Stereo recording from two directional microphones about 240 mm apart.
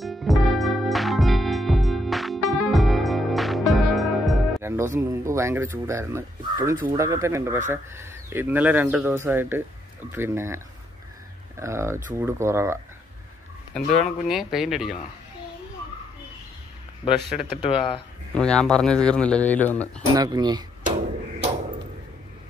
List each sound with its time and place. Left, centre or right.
0.0 s music: centre
4.6 s speech: centre
13.7 s speech: centre
17.3 s speech: centre
20.2 s speech: centre